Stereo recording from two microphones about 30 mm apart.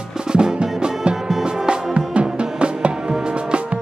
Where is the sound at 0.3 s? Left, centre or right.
Right.